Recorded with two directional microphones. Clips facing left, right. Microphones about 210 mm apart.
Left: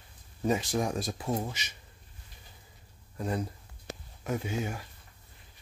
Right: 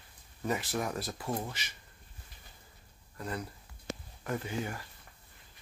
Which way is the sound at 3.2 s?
20° left (ahead or behind).